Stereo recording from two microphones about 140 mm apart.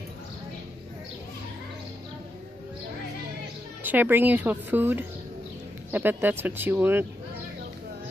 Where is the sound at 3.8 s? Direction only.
15° right (ahead or behind).